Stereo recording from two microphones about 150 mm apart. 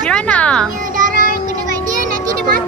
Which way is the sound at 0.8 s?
65° right (ahead or behind).